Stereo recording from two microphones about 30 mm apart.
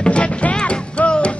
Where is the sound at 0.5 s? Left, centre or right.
Left.